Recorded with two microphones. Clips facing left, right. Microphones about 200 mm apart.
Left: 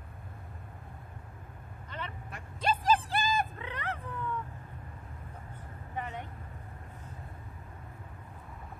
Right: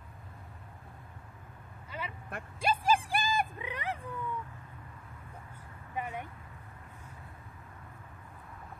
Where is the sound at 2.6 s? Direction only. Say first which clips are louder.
Left 1 dB; 10° right (ahead or behind).